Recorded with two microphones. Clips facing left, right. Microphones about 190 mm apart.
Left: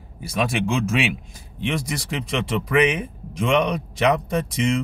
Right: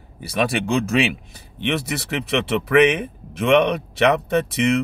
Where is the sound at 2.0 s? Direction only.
65° right (ahead or behind).